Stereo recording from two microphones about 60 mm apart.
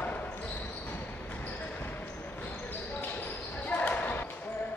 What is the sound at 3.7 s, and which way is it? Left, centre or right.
Basketball bounce, left.